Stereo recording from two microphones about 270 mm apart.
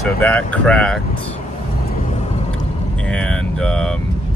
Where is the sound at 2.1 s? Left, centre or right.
Left.